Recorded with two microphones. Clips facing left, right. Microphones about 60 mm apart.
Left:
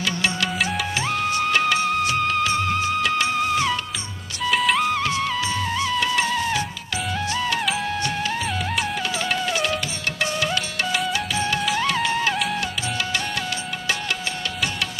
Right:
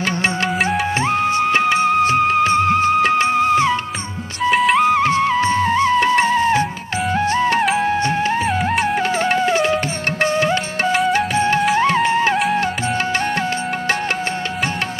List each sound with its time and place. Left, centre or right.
0.7 s music: right
4.6 s music: centre
4.8 s music: right